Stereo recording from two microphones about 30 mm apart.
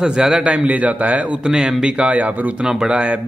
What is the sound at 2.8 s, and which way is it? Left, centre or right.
Speech, right.